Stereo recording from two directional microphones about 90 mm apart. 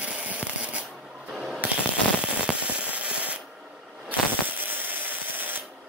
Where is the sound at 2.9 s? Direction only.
15° right (ahead or behind).